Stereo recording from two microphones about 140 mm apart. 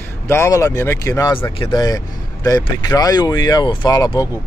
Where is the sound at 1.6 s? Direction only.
30° left (ahead or behind).